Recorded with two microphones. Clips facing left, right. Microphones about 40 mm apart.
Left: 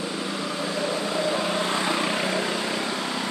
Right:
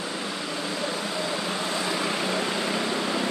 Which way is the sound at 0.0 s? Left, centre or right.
Centre.